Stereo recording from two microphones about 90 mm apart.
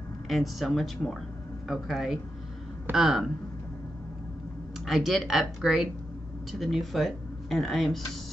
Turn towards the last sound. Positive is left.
turn(degrees=0)  # may be behind; listen again after turning